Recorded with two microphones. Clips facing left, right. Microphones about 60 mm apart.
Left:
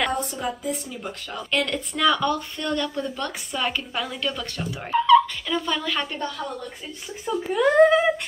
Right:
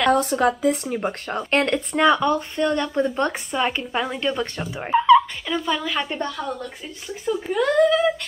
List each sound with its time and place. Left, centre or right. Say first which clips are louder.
0.1 s a woman's voice: right 9 dB; right
0.8 s speech: right 8 dB; right
2.0 s speech: right 3 dB; right
3.5 s speech: right 2 dB; right
7.4 s speech: left 2 dB; centre
7.7 s speech: left 1 dB; left